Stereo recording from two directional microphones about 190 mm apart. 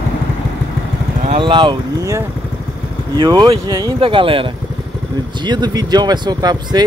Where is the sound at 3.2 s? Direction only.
25° right (ahead or behind).